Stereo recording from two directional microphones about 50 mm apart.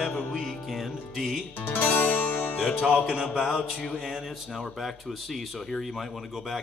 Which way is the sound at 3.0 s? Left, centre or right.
Centre.